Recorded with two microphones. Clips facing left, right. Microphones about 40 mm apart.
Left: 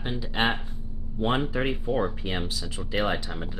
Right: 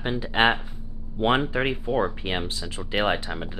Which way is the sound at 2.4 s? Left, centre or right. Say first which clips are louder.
Right 1 dB; right.